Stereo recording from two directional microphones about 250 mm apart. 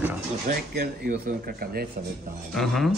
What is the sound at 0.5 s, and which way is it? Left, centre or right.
Speech, right.